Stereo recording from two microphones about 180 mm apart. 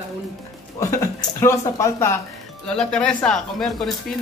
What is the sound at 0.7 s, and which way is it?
A man's voice, 15° left (ahead or behind).